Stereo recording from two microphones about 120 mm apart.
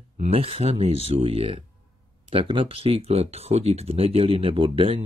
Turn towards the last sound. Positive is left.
turn(degrees=-50)  # may be behind; listen again after turning